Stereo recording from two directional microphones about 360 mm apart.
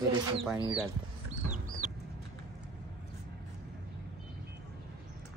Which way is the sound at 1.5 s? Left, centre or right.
Right.